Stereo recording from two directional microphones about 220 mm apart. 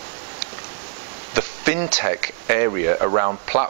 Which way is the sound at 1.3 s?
15° right (ahead or behind).